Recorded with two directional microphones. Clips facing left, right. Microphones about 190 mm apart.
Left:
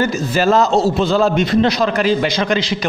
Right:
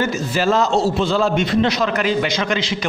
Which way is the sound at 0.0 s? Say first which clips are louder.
Left 3 dB; 40° left (ahead or behind).